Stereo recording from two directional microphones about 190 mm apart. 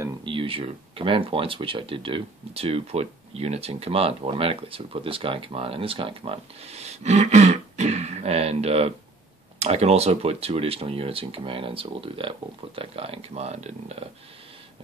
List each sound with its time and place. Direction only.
0.2 s speech: 25° right (ahead or behind)